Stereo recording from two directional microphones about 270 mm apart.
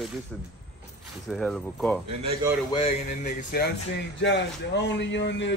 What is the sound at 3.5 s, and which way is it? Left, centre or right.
Speech, left.